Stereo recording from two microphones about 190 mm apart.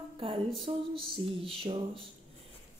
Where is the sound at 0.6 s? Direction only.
30° right (ahead or behind).